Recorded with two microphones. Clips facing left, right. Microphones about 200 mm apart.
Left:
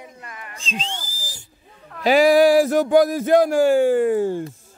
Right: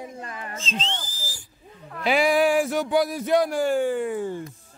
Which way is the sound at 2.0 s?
40° left (ahead or behind).